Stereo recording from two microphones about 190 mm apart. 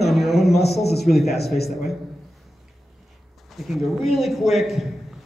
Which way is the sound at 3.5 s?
Centre (ahead or behind).